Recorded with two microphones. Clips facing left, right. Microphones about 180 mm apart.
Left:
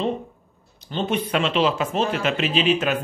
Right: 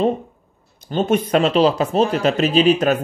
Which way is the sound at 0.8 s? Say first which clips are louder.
Right 6 dB; 45° right (ahead or behind).